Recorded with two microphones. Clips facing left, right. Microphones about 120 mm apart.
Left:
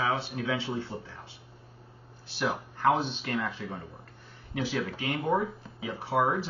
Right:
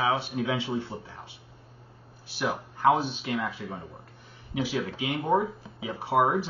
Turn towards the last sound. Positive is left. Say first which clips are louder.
# right 3 dB
turn(degrees=-20)  # may be behind; listen again after turning